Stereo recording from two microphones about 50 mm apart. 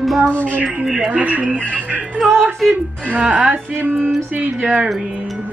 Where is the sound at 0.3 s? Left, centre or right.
Left.